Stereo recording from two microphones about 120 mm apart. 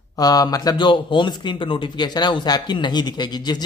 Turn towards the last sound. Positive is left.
turn(degrees=35)  # may be behind; listen again after turning